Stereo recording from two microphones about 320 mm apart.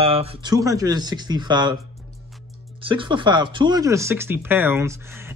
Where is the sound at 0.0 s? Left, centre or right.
Centre.